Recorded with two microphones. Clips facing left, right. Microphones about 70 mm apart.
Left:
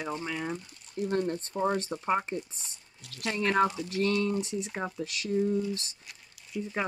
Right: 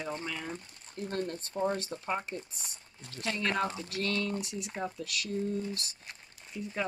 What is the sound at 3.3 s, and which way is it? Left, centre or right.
Speech, left.